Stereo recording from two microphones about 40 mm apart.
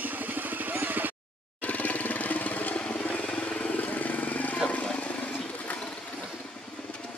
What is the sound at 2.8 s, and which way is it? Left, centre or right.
Vehicle, left.